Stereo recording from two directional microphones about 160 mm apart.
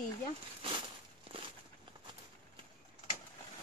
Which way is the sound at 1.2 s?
35° right (ahead or behind).